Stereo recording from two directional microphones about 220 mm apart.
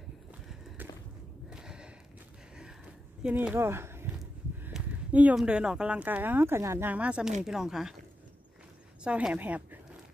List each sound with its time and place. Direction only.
1.5 s a sound: 5° right (ahead or behind)
7.4 s speech: centre (ahead or behind)
9.0 s a woman's voice: 5° right (ahead or behind)